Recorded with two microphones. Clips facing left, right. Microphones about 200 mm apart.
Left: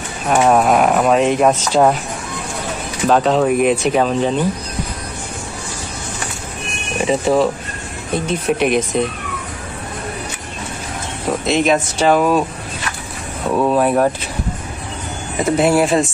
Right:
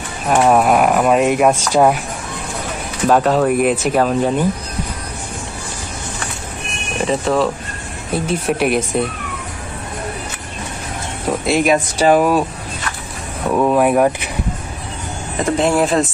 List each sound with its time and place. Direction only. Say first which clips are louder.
0.3 s speech: even; centre (ahead or behind)
3.1 s speech: even; 5° right (ahead or behind)
7.1 s speech: left 2 dB; centre (ahead or behind)
11.4 s speech: right 1 dB; 10° right (ahead or behind)
13.5 s speech: right 1 dB; 5° right (ahead or behind)
15.3 s speech: left 2 dB; 5° left (ahead or behind)